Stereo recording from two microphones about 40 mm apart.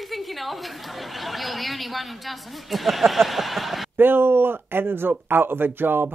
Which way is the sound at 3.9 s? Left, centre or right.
Right.